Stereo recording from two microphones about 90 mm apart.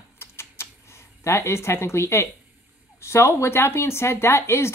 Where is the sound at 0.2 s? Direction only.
30° left (ahead or behind).